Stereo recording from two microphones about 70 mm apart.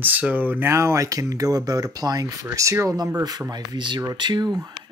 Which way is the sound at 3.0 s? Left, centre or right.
Right.